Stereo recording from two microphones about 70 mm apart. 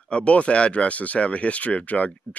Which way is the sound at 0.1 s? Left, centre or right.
Centre.